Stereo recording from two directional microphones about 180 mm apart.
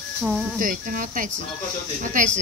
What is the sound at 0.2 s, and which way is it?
Speech, centre (ahead or behind).